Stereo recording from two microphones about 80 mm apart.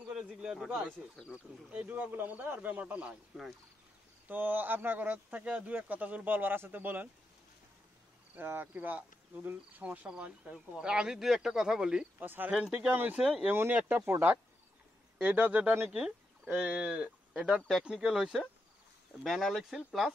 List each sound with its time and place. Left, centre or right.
0.1 s speech: centre
4.3 s speech: right
8.4 s speech: right; by 12.1 s centre
12.2 s speech: right
15.1 s speech: centre
15.9 s speech: centre